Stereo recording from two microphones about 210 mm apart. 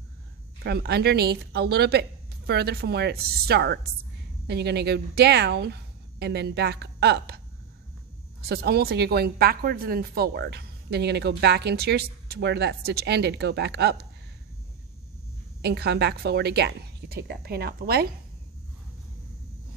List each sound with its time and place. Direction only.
0.7 s a woman's voice: 50° right (ahead or behind)
15.6 s a woman's voice: 50° right (ahead or behind)